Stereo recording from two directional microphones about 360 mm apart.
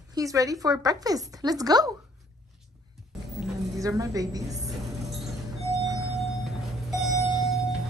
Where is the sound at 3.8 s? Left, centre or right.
Centre.